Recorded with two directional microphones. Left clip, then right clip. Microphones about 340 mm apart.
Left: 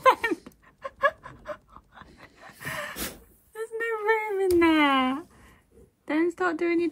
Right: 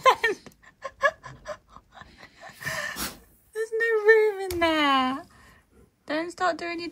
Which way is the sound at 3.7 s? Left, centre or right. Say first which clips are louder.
Right 6 dB; centre.